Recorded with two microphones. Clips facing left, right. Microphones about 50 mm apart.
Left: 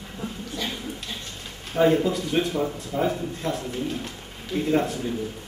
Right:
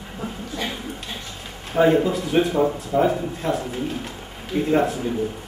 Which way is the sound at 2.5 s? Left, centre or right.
Right.